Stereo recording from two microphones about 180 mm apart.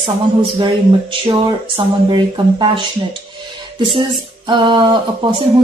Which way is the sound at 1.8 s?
25° right (ahead or behind).